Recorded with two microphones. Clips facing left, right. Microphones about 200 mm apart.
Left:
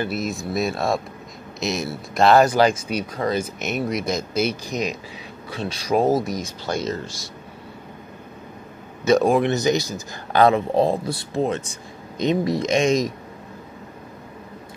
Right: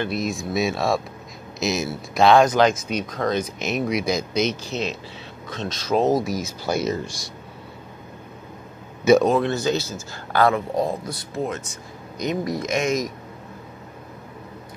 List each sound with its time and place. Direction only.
0.0 s speech: centre (ahead or behind)
6.2 s speech: 5° right (ahead or behind)
9.2 s speech: 15° left (ahead or behind)